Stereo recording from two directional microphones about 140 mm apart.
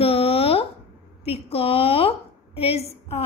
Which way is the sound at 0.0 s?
45° left (ahead or behind).